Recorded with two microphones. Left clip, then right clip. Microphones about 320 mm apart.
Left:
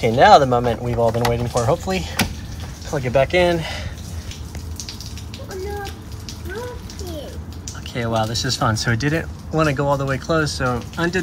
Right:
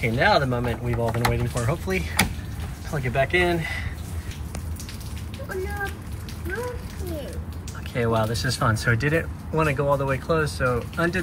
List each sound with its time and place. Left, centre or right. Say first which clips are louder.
0.0 s speech: left 9 dB; centre
7.9 s speech: left 2 dB; centre